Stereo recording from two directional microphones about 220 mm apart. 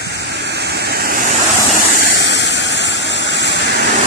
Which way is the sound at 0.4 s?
50° right (ahead or behind).